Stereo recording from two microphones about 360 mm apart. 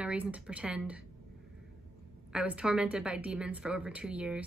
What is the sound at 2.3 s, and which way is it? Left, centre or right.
A woman's voice, centre.